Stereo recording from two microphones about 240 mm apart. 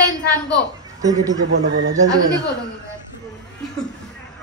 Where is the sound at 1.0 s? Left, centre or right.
Centre.